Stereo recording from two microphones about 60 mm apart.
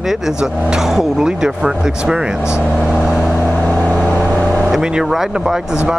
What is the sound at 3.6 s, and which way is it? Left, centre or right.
Vehicle, centre.